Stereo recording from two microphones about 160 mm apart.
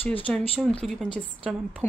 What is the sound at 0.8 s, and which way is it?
Speech, centre (ahead or behind).